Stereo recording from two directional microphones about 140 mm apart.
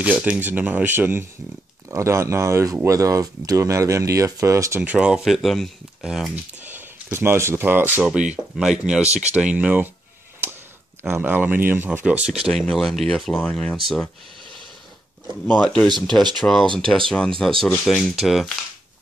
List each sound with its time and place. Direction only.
0.0 s speech: 10° right (ahead or behind)
6.6 s speech: 15° right (ahead or behind)
11.0 s speech: 15° right (ahead or behind); by 13.7 s 10° left (ahead or behind)
15.4 s speech: 10° left (ahead or behind)